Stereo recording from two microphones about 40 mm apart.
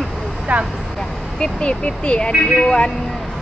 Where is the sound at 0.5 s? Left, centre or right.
Right.